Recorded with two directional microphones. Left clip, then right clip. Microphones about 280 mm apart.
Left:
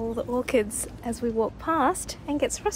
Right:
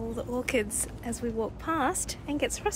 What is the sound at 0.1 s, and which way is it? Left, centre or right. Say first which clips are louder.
A woman's voice: left 4 dB; centre.